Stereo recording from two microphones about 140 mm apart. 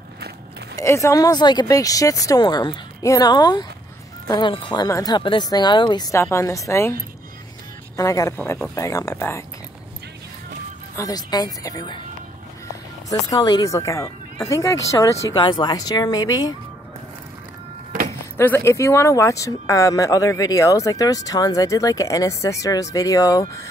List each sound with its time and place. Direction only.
0.7 s speech: 20° left (ahead or behind)
6.1 s speech: 20° left (ahead or behind)
11.0 s speech: 25° left (ahead or behind)
13.1 s speech: 25° left (ahead or behind)
18.4 s speech: 15° left (ahead or behind)